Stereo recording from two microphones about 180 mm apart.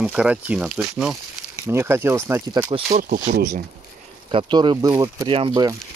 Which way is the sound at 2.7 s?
40° right (ahead or behind).